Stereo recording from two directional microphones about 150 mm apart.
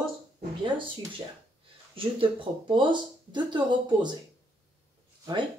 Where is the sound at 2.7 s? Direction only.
30° right (ahead or behind).